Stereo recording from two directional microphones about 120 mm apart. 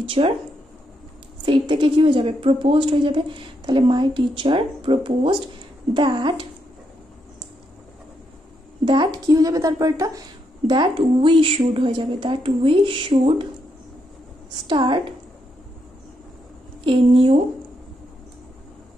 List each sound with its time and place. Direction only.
0.0 s a woman's voice: 45° right (ahead or behind)
1.4 s a woman's voice: 45° right (ahead or behind)
8.8 s a woman's voice: 40° right (ahead or behind)
10.7 s a woman's voice: 40° right (ahead or behind)
14.7 s a woman's voice: 40° right (ahead or behind)
16.8 s a woman's voice: 45° right (ahead or behind)